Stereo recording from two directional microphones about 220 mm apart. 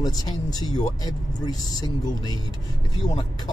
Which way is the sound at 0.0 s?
20° left (ahead or behind).